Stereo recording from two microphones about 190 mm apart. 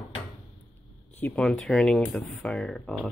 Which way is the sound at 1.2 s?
5° left (ahead or behind).